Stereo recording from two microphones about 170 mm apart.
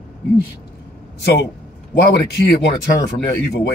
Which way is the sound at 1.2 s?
75° left (ahead or behind).